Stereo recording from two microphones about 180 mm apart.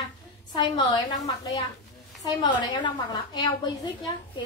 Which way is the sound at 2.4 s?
25° left (ahead or behind).